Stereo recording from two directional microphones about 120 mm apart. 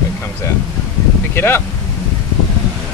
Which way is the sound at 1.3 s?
20° left (ahead or behind).